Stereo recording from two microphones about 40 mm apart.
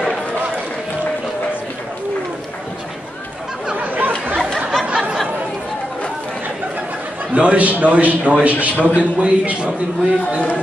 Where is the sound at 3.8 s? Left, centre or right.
Right.